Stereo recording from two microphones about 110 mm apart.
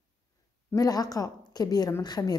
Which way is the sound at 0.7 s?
35° left (ahead or behind).